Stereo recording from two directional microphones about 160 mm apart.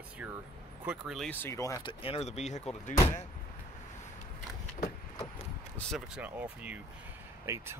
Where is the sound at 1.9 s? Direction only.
35° left (ahead or behind).